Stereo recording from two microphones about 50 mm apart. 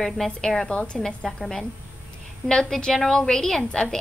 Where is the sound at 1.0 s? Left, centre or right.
Centre.